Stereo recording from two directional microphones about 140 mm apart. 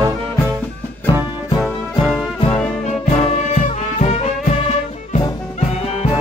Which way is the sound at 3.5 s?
55° left (ahead or behind).